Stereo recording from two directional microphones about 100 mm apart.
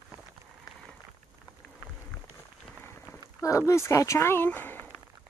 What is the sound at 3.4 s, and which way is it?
Speech, 30° left (ahead or behind).